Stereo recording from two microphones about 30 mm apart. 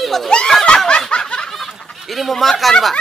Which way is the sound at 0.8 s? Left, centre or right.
Left.